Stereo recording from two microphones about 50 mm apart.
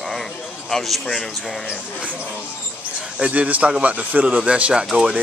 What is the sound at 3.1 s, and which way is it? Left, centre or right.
Speech, right.